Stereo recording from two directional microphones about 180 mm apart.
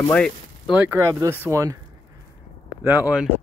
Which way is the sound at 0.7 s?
10° right (ahead or behind).